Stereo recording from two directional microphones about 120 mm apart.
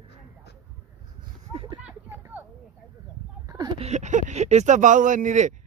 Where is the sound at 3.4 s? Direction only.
35° right (ahead or behind).